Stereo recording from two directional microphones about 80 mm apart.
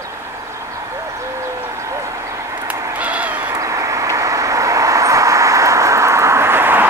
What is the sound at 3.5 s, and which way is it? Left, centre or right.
Vehicle, right.